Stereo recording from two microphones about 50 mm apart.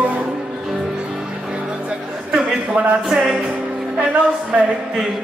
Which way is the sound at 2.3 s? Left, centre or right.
Centre.